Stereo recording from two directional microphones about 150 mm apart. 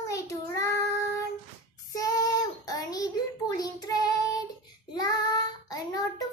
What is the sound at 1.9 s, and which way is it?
Child singing, 25° left (ahead or behind).